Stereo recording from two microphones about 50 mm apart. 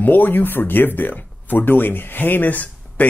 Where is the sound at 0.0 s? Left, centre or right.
Left.